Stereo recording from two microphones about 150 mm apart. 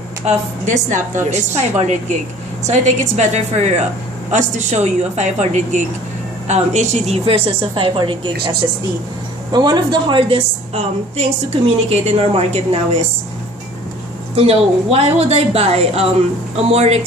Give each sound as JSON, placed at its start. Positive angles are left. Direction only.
{"t": 0.2, "sound": "a woman's voice", "side_deg": -50}
{"t": 9.5, "sound": "a woman's voice", "side_deg": -30}
{"t": 14.3, "sound": "a woman's voice", "side_deg": -40}